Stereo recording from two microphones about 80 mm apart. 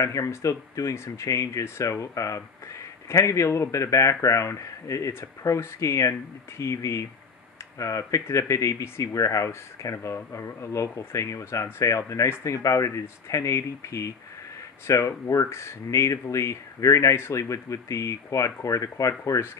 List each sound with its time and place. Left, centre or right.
0.0 s speech: left